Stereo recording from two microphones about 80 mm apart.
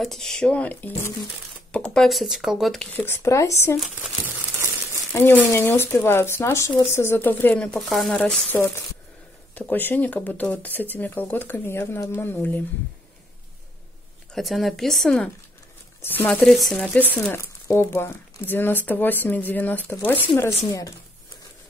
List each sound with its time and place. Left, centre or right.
0.0 s speech: centre
2.0 s speech: centre
2.9 s speech: left
3.2 s speech: left
5.2 s speech: left
7.8 s speech: centre
8.1 s speech: centre
8.5 s speech: left
14.3 s speech: centre
16.0 s speech: left
16.4 s speech: centre
16.7 s speech: centre
17.3 s speech: left
20.4 s speech: left